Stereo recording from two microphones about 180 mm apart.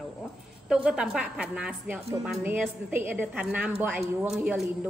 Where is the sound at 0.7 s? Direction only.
5° right (ahead or behind).